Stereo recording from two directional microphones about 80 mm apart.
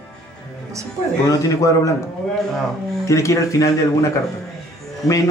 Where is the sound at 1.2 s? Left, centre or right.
Left.